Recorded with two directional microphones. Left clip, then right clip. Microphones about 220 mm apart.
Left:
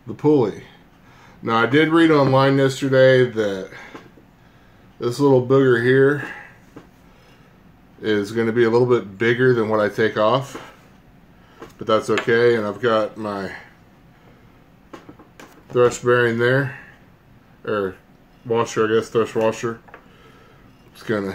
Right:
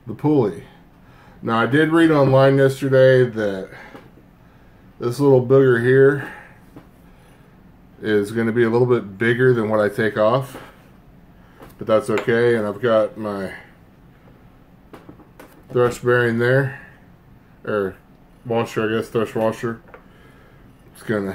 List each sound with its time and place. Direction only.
0.1 s speech: 5° left (ahead or behind)
5.0 s speech: 5° left (ahead or behind)
8.0 s speech: 5° left (ahead or behind)
11.8 s speech: 5° left (ahead or behind)
15.7 s speech: 5° left (ahead or behind)
21.0 s speech: 5° left (ahead or behind)